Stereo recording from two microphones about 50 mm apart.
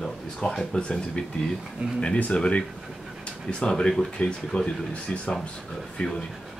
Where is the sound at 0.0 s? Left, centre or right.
Centre.